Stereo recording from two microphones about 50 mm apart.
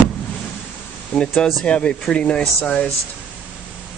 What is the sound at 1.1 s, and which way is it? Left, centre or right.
Speech, left.